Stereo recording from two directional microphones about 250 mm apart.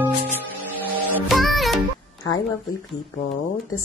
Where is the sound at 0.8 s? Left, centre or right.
Centre.